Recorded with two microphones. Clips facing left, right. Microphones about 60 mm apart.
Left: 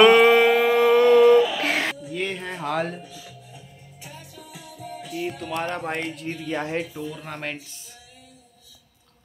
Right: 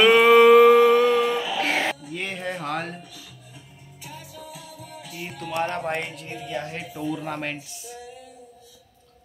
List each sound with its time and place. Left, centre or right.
0.0 s music: centre
6.5 s speech: left
6.8 s speech: centre